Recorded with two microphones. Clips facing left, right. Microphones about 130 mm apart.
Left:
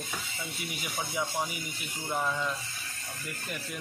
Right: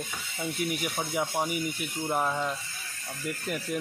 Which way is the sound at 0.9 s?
35° right (ahead or behind).